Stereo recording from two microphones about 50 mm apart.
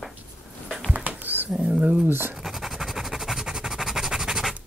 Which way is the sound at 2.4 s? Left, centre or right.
Centre.